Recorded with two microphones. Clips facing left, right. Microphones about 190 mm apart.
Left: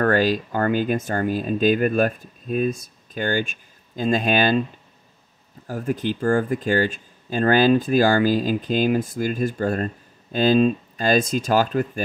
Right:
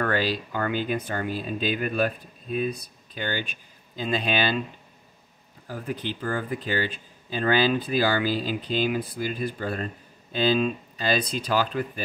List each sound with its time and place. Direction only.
0.0 s speech: 45° left (ahead or behind)
5.7 s speech: 45° left (ahead or behind)